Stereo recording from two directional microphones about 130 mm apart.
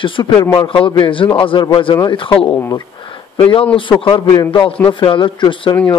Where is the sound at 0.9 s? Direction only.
40° left (ahead or behind).